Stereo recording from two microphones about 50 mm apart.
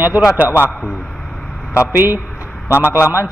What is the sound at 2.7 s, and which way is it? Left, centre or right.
Speech, left.